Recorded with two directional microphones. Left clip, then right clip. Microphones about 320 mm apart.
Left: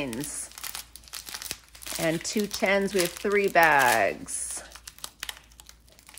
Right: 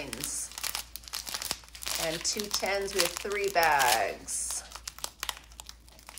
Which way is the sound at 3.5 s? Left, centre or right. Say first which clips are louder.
Left 4 dB; left.